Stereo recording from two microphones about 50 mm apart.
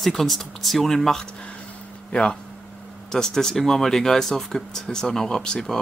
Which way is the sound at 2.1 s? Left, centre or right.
Centre.